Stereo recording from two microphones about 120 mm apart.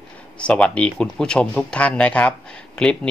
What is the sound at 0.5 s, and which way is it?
Speech, 10° left (ahead or behind).